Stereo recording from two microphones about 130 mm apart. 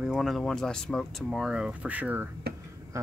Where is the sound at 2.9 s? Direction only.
25° right (ahead or behind).